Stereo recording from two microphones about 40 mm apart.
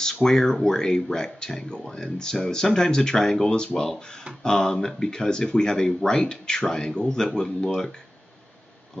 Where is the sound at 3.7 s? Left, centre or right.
Centre.